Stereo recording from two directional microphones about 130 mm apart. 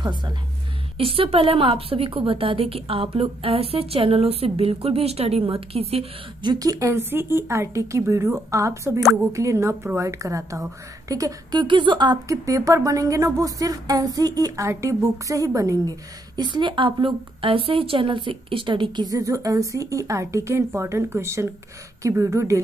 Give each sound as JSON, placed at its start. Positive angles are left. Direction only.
{"t": 0.0, "sound": "a woman's voice", "side_deg": -35}
{"t": 0.9, "sound": "a woman's voice", "side_deg": -45}
{"t": 6.4, "sound": "a woman's voice", "side_deg": -30}
{"t": 11.6, "sound": "a woman's voice", "side_deg": -40}
{"t": 12.3, "sound": "a woman's voice", "side_deg": -25}
{"t": 16.3, "sound": "a woman's voice", "side_deg": -35}
{"t": 19.1, "sound": "a woman's voice", "side_deg": -25}